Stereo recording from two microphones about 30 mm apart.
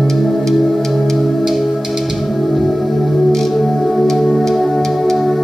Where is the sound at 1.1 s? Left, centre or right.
Centre.